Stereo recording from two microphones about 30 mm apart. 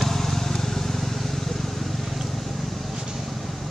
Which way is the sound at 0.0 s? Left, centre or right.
Centre.